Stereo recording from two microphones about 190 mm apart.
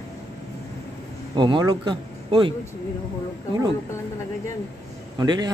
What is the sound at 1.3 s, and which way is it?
A man's voice, 25° right (ahead or behind).